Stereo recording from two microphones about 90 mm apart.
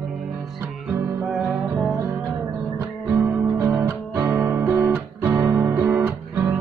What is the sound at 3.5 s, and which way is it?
Music, 40° right (ahead or behind).